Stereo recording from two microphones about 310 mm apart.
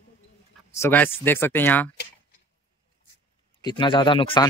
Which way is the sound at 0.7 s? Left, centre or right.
Centre.